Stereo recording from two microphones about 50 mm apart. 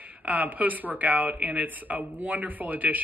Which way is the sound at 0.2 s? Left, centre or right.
Right.